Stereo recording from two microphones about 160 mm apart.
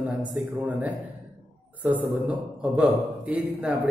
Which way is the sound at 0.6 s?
10° right (ahead or behind).